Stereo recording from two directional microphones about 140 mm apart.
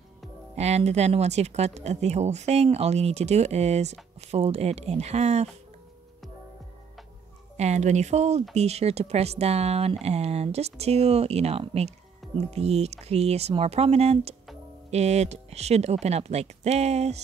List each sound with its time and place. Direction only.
0.6 s speech: 50° right (ahead or behind)
7.5 s speech: 55° right (ahead or behind)